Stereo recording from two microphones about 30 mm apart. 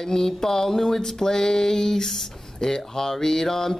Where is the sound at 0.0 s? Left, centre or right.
Centre.